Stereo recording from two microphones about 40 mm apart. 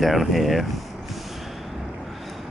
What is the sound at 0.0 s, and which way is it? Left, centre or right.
Speech, centre.